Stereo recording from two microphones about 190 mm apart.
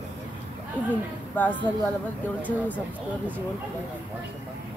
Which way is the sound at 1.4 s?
10° left (ahead or behind).